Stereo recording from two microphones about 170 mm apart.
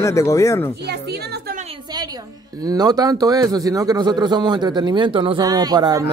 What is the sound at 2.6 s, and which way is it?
A man's voice, 20° right (ahead or behind).